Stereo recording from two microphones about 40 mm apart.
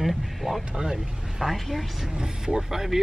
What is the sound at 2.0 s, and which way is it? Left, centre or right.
Speech, centre.